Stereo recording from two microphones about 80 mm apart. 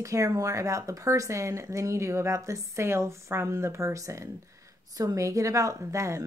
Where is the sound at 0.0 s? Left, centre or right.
Right.